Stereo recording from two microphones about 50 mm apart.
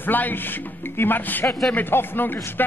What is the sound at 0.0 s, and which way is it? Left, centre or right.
Speech, left.